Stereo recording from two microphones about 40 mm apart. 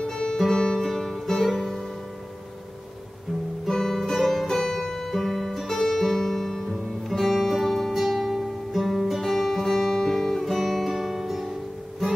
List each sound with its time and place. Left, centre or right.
0.0 s music: centre
3.6 s music: centre
10.4 s guitar: centre